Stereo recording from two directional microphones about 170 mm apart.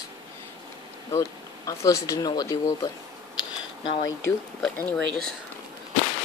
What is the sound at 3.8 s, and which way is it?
Speech, 30° left (ahead or behind).